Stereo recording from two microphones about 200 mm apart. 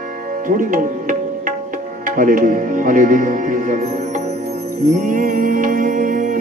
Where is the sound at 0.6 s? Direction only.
40° right (ahead or behind).